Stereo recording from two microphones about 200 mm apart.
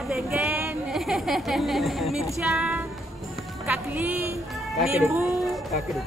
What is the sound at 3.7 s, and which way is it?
A man's voice, 10° right (ahead or behind).